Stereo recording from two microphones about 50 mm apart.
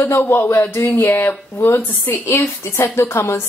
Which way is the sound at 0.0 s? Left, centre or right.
Left.